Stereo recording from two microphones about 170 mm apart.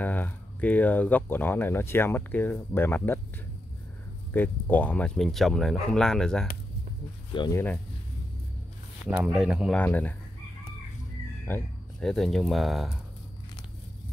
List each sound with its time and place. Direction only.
0.0 s speech: 10° left (ahead or behind)
4.3 s speech: 10° left (ahead or behind)
7.3 s speech: 25° left (ahead or behind)
9.0 s speech: 5° right (ahead or behind)
9.8 s speech: 10° left (ahead or behind)
11.4 s a sound: 10° left (ahead or behind)
12.1 s speech: centre (ahead or behind)